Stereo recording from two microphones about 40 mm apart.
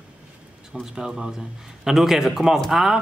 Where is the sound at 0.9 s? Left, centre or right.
Centre.